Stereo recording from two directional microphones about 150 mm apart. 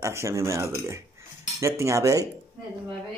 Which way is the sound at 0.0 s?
20° right (ahead or behind).